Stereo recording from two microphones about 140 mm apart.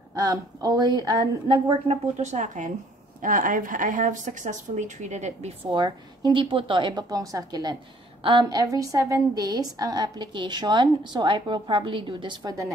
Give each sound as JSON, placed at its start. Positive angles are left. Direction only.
{"t": 0.2, "sound": "a woman's voice", "side_deg": -25}
{"t": 5.7, "sound": "a woman's voice", "side_deg": -30}